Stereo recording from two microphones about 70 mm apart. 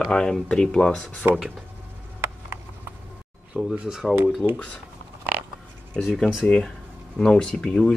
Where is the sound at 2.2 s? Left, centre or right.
Right.